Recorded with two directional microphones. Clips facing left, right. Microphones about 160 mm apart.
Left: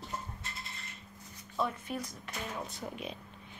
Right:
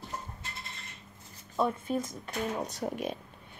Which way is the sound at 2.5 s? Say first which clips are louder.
Right 6 dB; 40° right (ahead or behind).